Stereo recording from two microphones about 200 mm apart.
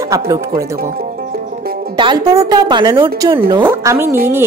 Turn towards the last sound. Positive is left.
turn(degrees=-10)  # may be behind; listen again after turning